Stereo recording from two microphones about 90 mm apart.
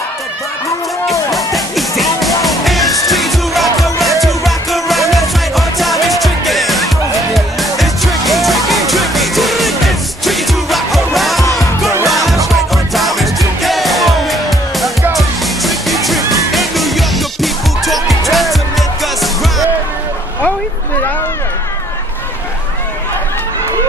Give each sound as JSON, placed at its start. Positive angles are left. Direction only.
{"t": 1.3, "sound": "music", "side_deg": 0}